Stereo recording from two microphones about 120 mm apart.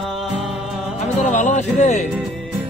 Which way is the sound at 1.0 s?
90° left.